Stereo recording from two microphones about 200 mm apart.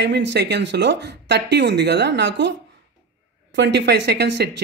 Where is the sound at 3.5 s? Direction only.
60° right (ahead or behind).